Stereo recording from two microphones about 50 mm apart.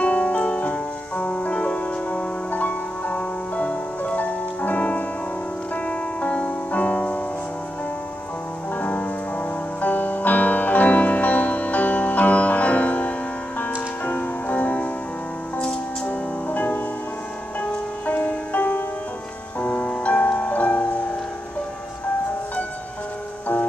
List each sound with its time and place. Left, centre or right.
0.0 s music: left
8.7 s music: left
16.4 s music: left